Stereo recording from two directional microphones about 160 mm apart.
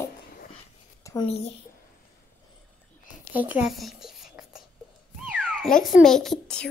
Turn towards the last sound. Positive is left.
turn(degrees=5)  # may be behind; listen again after turning